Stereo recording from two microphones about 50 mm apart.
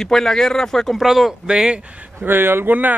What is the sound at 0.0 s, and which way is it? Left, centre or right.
Speech, centre.